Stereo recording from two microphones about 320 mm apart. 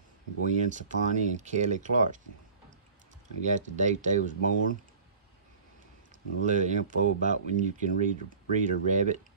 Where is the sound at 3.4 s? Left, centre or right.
Right.